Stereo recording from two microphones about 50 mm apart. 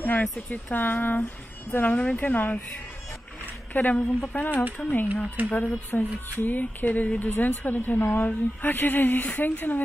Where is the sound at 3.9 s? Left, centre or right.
Left.